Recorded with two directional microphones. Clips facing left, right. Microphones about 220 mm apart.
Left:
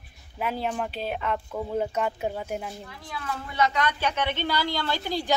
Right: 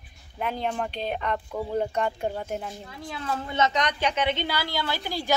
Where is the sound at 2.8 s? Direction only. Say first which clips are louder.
Right 3 dB; 25° right (ahead or behind).